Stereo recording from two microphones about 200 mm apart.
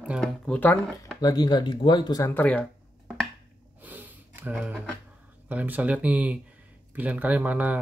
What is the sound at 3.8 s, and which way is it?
Sniff, 10° right (ahead or behind).